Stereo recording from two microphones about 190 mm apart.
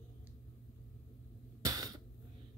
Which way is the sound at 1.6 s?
20° right (ahead or behind).